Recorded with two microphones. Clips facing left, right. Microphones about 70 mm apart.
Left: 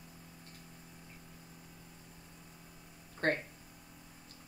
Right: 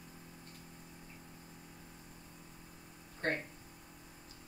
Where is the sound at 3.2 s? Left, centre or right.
Left.